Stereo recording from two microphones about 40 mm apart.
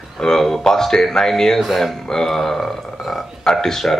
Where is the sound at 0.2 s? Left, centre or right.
Centre.